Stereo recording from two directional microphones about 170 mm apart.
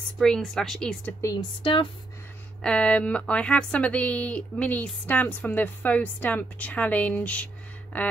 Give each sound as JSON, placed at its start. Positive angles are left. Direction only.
{"t": 0.2, "sound": "speech", "side_deg": 5}
{"t": 1.6, "sound": "speech", "side_deg": 30}
{"t": 2.6, "sound": "speech", "side_deg": 5}